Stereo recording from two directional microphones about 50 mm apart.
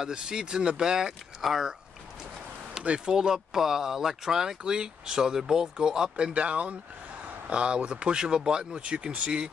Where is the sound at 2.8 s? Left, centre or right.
Centre.